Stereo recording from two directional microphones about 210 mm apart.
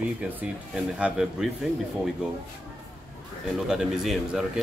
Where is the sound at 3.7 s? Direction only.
Centre (ahead or behind).